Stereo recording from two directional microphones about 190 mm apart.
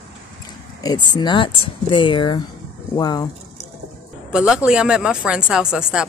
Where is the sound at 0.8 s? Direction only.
20° left (ahead or behind).